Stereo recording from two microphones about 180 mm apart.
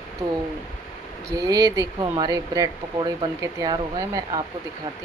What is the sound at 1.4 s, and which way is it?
Speech, 20° right (ahead or behind).